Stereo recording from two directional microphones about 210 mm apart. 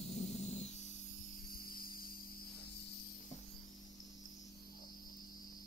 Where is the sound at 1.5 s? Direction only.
45° left (ahead or behind).